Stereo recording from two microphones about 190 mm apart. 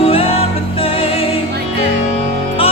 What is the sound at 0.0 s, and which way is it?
Music, 30° left (ahead or behind).